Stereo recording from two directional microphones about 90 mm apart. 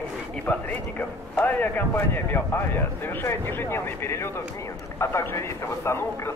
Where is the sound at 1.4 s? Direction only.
15° left (ahead or behind).